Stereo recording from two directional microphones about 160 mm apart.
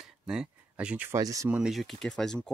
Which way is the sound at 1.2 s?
20° right (ahead or behind).